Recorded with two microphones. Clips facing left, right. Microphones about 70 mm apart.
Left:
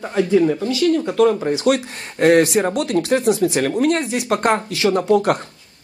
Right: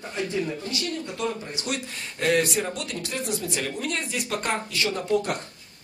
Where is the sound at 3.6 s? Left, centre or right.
Left.